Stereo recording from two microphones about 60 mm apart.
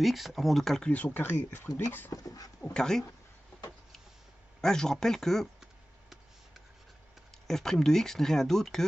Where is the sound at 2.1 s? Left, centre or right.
Left.